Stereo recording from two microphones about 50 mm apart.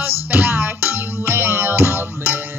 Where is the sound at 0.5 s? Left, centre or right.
Right.